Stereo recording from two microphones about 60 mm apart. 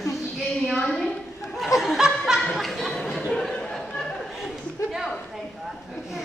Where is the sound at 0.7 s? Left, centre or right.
Centre.